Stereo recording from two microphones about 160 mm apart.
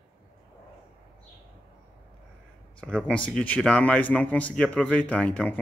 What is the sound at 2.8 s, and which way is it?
A man's voice, centre (ahead or behind).